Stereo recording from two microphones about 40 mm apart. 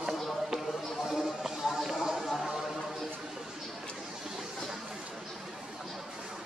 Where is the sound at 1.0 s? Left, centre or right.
Centre.